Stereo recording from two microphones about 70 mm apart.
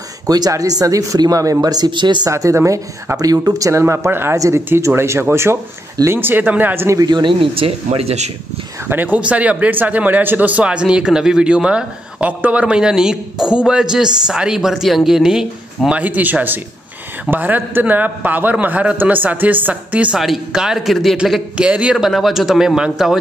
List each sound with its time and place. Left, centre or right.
0.3 s speech: right
2.3 s speech: right
4.1 s speech: right
4.4 s a man's voice: right
7.0 s speech: right
8.8 s speech: right; by 16.0 s centre
16.0 s a man's voice: right
20.2 s speech: centre
21.5 s speech: centre
21.9 s speech: centre